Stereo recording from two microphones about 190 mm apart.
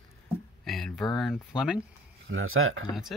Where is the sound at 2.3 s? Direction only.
90° right.